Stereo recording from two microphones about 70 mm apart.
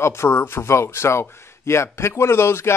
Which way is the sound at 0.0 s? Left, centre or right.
Left.